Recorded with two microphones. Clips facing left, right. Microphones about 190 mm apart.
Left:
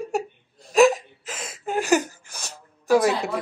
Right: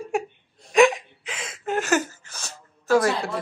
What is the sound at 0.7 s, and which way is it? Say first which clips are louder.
Hiccup: left 1 dB; centre (ahead or behind).